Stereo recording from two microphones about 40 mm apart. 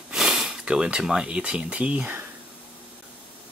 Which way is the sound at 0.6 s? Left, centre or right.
Right.